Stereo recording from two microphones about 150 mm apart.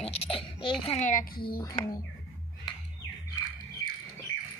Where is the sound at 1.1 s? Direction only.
80° left.